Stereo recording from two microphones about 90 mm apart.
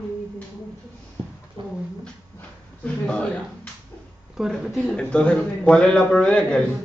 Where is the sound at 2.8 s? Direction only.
15° left (ahead or behind).